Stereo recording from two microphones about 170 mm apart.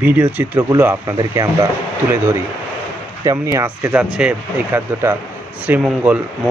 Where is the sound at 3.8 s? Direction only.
5° right (ahead or behind).